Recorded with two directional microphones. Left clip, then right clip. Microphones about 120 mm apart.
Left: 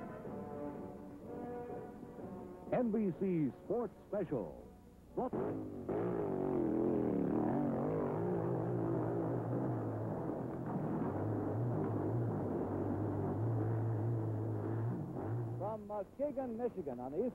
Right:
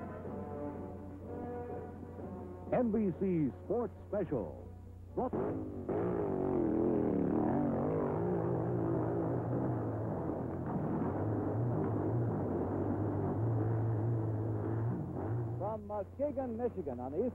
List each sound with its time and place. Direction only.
2.7 s speech: 35° left (ahead or behind)
5.1 s music: 30° left (ahead or behind)